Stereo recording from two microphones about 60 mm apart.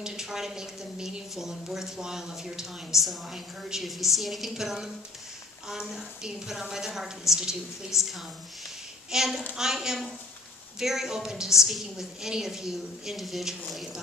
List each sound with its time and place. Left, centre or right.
0.0 s a woman's voice: centre